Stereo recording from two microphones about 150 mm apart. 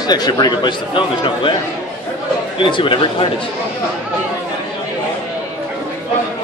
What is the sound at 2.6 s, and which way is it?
Speech, 35° left (ahead or behind).